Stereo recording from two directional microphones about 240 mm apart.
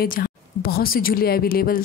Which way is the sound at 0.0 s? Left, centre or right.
Left.